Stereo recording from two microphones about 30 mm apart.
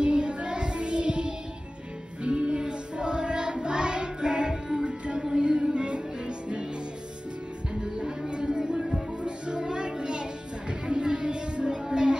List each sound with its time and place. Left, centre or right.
0.0 s child singing: right
2.2 s music: right
7.7 s music: right
8.3 s a sound: right
8.5 s music: right